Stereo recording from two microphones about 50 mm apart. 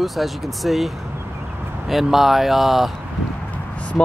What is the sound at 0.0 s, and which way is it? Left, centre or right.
Speech, centre.